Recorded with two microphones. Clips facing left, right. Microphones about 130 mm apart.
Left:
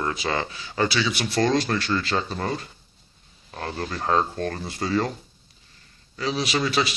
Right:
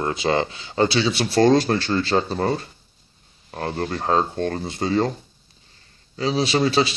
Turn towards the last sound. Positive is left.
turn(degrees=-30)  # may be behind; listen again after turning